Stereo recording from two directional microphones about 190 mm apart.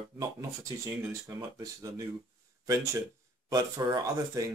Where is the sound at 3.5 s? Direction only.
20° right (ahead or behind).